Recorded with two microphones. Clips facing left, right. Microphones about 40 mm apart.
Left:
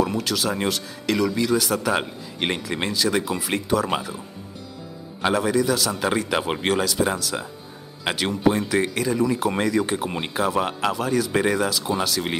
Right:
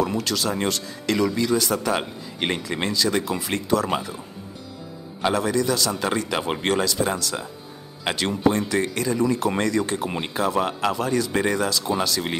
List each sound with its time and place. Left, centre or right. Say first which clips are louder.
0.0 s speech: left 1 dB; centre
5.2 s a man's voice: left 1 dB; centre